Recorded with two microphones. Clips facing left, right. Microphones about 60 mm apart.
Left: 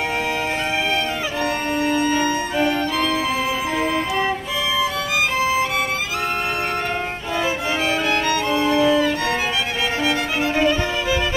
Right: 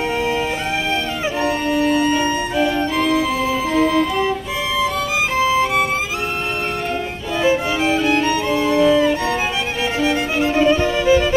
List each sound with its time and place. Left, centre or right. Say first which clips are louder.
2.8 s music: right 3 dB; right
3.7 s music: right 7 dB; left
8.5 s music: right 2 dB; left
10.7 s music: right 6 dB; right